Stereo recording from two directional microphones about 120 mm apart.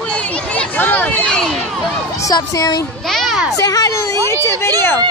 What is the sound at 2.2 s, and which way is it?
Speech, 30° left (ahead or behind).